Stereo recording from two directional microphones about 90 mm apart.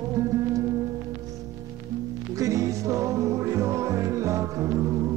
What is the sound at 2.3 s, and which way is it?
Music, 35° right (ahead or behind).